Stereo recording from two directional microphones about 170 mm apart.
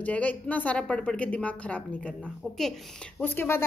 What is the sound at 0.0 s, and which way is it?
A woman's voice, 10° left (ahead or behind).